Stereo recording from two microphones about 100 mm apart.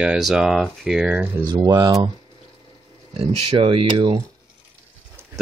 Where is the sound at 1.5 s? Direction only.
45° right (ahead or behind).